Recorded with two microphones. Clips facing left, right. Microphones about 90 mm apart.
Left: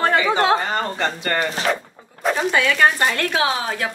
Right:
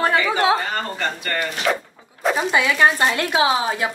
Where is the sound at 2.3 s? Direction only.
5° right (ahead or behind).